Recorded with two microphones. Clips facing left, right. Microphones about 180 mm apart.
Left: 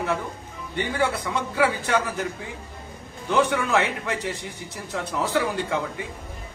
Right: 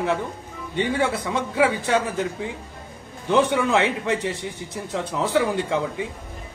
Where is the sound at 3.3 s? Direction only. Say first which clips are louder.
Right 2 dB; 25° right (ahead or behind).